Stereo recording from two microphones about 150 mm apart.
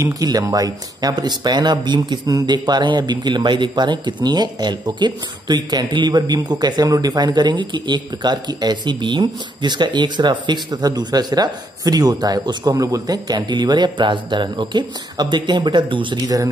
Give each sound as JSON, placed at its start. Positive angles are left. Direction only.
{"t": 0.0, "sound": "speech", "side_deg": -25}